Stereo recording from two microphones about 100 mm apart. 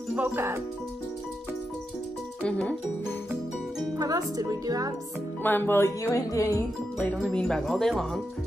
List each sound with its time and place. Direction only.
0.1 s speech: 15° right (ahead or behind)
2.4 s speech: 10° left (ahead or behind)
4.0 s speech: 35° right (ahead or behind)
5.4 s speech: 20° left (ahead or behind)
7.2 s speech: 5° left (ahead or behind)